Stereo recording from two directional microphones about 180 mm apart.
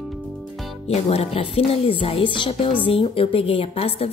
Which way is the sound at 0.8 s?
35° left (ahead or behind).